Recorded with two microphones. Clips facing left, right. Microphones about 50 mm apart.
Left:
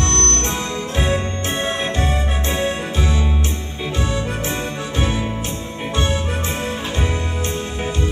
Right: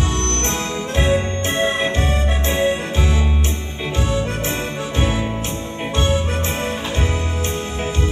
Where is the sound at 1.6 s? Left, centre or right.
Centre.